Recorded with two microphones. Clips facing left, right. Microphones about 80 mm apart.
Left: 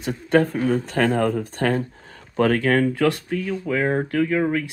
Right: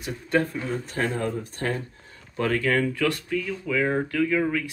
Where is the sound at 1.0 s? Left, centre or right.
Left.